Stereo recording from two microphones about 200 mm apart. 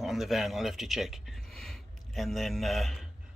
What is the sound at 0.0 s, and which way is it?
A man's voice, centre (ahead or behind).